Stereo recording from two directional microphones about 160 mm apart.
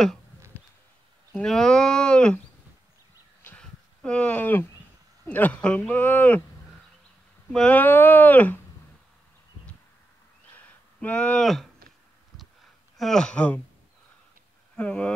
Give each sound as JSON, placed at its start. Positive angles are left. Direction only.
{"t": 1.3, "sound": "speech", "side_deg": 5}
{"t": 3.4, "sound": "a sound", "side_deg": 5}
{"t": 5.2, "sound": "speech", "side_deg": 10}
{"t": 7.5, "sound": "speech", "side_deg": 10}
{"t": 11.0, "sound": "speech", "side_deg": 10}
{"t": 12.9, "sound": "speech", "side_deg": 0}
{"t": 14.8, "sound": "speech", "side_deg": 10}